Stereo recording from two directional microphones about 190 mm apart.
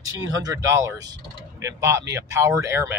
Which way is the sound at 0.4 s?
20° right (ahead or behind).